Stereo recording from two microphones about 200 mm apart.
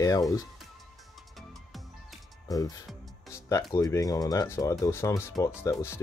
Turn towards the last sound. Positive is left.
turn(degrees=15)  # may be behind; listen again after turning